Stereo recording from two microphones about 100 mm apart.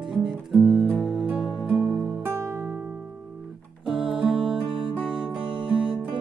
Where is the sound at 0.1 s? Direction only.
5° right (ahead or behind).